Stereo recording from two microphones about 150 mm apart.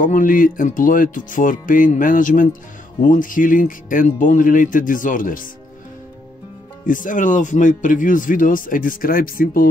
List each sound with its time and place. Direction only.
0.0 s a man's voice: 60° left (ahead or behind)
6.9 s a man's voice: 60° left (ahead or behind)